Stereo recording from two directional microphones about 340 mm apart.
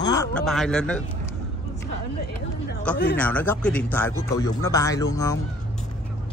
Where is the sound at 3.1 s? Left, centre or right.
Centre.